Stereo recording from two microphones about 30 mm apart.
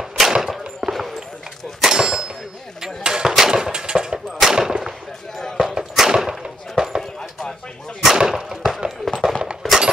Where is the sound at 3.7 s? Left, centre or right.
Right.